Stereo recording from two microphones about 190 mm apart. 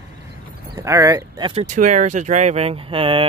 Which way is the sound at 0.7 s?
15° right (ahead or behind).